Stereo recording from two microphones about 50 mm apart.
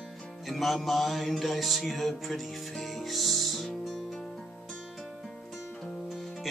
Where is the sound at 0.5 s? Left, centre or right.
Centre.